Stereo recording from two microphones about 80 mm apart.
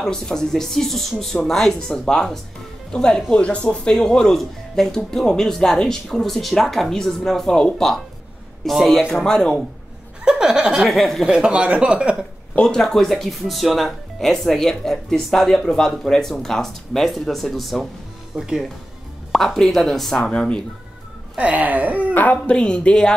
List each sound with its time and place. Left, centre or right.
0.0 s speech: centre
10.2 s speech: centre
11.2 s speech: centre
12.5 s speech: centre
21.4 s speech: centre
22.1 s speech: left